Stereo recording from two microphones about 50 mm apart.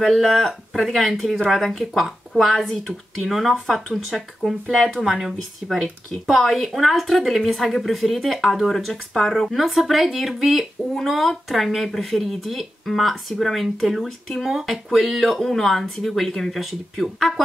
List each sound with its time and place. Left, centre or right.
0.0 s speech: centre